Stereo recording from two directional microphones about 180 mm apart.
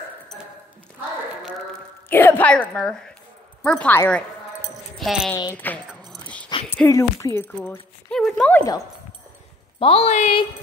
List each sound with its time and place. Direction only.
2.0 s speech: 10° left (ahead or behind)
5.6 s speech: 10° left (ahead or behind)
6.2 s a sound: 5° left (ahead or behind)
6.9 s speech: 20° left (ahead or behind)
9.8 s speech: 30° left (ahead or behind)